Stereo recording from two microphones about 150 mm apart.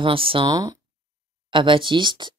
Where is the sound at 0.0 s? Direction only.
35° right (ahead or behind).